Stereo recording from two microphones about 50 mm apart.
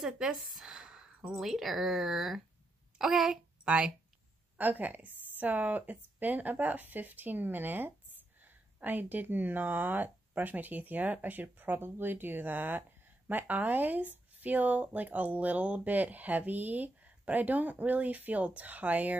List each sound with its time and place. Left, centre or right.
0.0 s a woman's voice: centre
0.6 s a sound: centre
1.4 s a woman's voice: centre
3.6 s speech: centre
4.6 s speech: right